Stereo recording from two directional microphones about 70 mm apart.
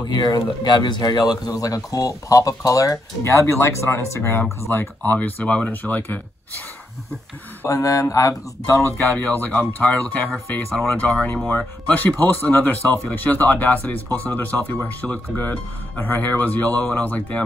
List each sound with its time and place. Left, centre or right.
0.1 s speech: left
7.6 s speech: left
9.2 s speech: left